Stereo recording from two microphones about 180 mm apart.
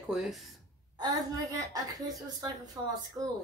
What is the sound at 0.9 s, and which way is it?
Speech, 20° right (ahead or behind).